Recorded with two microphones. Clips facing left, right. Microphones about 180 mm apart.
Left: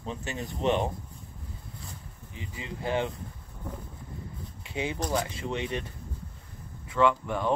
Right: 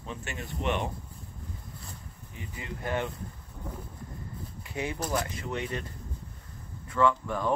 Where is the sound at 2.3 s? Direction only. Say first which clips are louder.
Left 1 dB; 25° left (ahead or behind).